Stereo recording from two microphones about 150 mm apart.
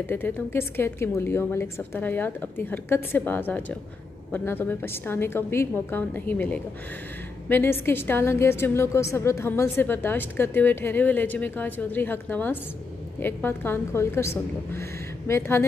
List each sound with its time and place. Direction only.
0.0 s a woman's voice: 15° left (ahead or behind)